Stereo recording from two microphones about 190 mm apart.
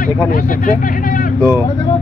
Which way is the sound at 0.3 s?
45° left (ahead or behind).